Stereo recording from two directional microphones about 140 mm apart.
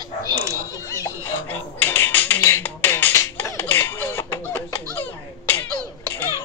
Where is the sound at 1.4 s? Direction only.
15° left (ahead or behind).